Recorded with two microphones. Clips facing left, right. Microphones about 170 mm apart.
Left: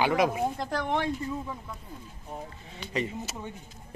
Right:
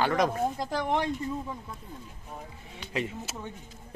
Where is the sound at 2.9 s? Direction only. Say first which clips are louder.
Left 1 dB; centre (ahead or behind).